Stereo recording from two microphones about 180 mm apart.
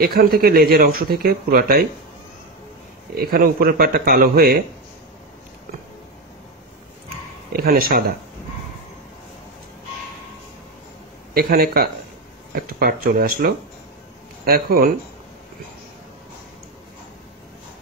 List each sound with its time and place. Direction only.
0.0 s speech: 60° right (ahead or behind)
3.2 s speech: 55° right (ahead or behind)
7.5 s speech: 55° right (ahead or behind)
11.3 s speech: 55° right (ahead or behind)